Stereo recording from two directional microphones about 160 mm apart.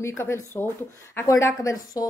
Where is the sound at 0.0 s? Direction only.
15° left (ahead or behind).